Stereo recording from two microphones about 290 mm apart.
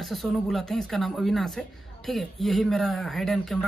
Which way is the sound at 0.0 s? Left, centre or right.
Centre.